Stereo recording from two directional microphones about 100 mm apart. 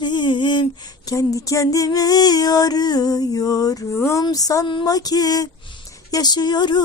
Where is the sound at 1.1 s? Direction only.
35° left (ahead or behind).